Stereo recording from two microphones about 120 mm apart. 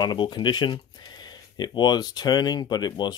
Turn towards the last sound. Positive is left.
turn(degrees=35)  # may be behind; listen again after turning